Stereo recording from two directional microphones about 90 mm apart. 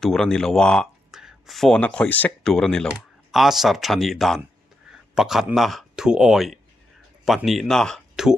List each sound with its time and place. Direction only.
0.0 s speech: 5° left (ahead or behind)
1.1 s a sound: 5° right (ahead or behind)
1.7 s speech: 15° left (ahead or behind)
2.5 s speech: 5° left (ahead or behind)
2.9 s speech: 5° right (ahead or behind)